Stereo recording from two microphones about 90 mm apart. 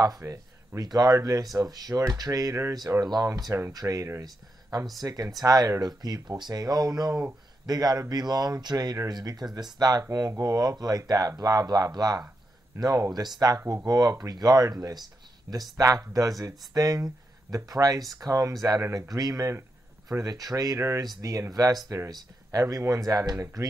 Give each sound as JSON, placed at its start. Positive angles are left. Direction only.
{"t": 0.0, "sound": "speech", "side_deg": -40}
{"t": 3.0, "sound": "speech", "side_deg": -50}
{"t": 15.5, "sound": "speech", "side_deg": -30}